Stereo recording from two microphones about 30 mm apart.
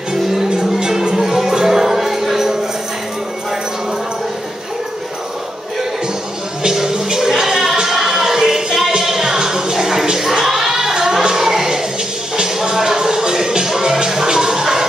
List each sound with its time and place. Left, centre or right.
0.1 s music: centre
6.6 s music: right